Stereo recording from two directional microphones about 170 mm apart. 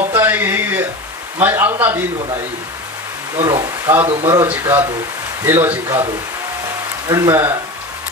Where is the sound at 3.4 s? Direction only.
15° right (ahead or behind).